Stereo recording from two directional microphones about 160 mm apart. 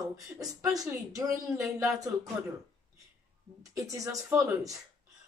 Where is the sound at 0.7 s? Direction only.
20° right (ahead or behind).